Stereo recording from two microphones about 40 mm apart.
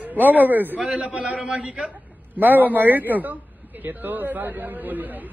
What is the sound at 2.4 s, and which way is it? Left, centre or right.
A man's voice, right.